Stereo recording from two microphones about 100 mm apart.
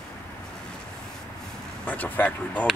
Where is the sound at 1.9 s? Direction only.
15° left (ahead or behind).